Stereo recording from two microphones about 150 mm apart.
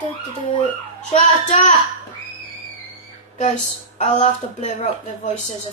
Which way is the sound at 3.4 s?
55° left (ahead or behind).